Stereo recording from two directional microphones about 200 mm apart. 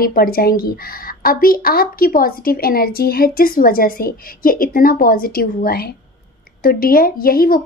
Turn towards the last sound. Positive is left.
turn(degrees=45)  # may be behind; listen again after turning